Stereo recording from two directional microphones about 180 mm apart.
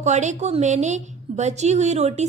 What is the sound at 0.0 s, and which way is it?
A woman's voice, 40° right (ahead or behind).